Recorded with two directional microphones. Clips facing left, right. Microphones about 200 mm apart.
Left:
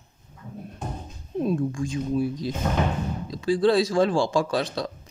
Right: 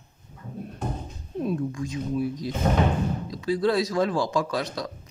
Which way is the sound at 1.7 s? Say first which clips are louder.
Left 2 dB; 30° left (ahead or behind).